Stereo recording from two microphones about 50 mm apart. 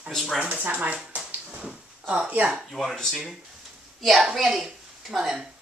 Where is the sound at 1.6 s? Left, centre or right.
Centre.